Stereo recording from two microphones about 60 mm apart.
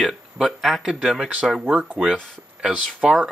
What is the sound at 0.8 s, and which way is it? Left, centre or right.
Speech, centre.